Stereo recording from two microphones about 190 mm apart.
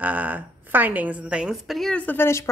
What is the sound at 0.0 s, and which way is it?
A woman's voice, 10° right (ahead or behind).